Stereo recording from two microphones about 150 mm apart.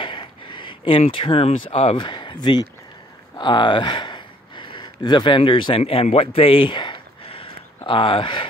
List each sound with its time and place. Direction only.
0.0 s speech: 35° left (ahead or behind)